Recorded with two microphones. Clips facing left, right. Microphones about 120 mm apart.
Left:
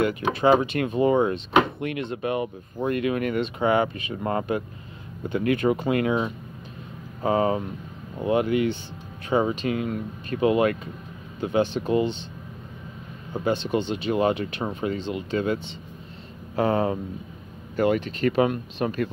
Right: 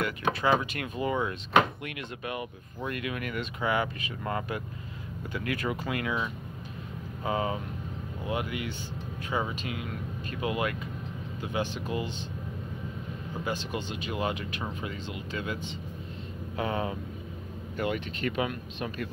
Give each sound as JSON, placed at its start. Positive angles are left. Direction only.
{"t": 0.3, "sound": "speech", "side_deg": 25}
{"t": 13.4, "sound": "speech", "side_deg": 30}